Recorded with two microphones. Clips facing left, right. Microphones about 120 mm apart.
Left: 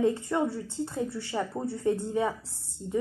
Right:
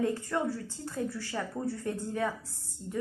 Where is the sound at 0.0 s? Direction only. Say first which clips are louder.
Left 4 dB; 20° left (ahead or behind).